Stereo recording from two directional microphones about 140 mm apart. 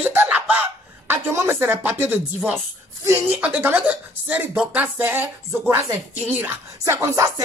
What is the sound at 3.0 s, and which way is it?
Speech, 15° right (ahead or behind).